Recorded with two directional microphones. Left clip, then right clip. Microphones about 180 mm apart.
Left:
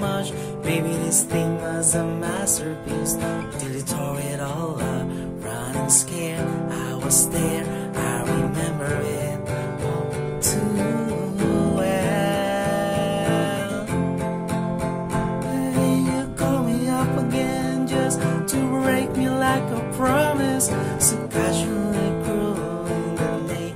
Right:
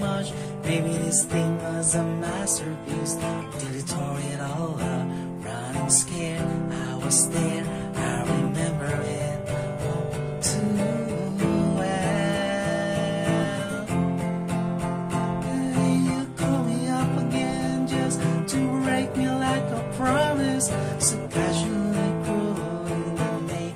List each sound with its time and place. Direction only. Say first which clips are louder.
7.1 s music: left 3 dB; 40° left (ahead or behind)
11.4 s music: left 4 dB; 45° left (ahead or behind)
15.5 s music: left 4 dB; 45° left (ahead or behind)